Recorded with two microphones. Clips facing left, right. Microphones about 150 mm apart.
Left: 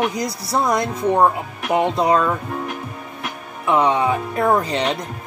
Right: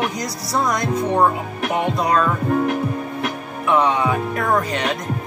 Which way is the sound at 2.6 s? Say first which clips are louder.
Right 8 dB; 65° right (ahead or behind).